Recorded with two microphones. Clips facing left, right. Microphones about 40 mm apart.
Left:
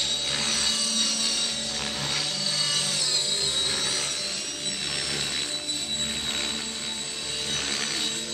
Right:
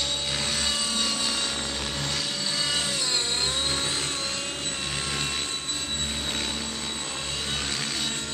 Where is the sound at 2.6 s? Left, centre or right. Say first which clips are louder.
Right 2 dB; centre.